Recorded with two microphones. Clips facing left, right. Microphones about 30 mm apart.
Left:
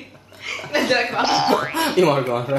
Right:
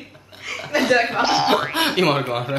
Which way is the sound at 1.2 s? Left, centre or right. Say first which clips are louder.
Even; centre.